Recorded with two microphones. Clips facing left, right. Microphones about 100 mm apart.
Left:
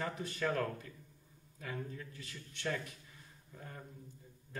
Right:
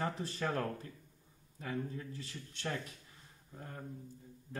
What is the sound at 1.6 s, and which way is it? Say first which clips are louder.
Speech: right 4 dB; 30° right (ahead or behind).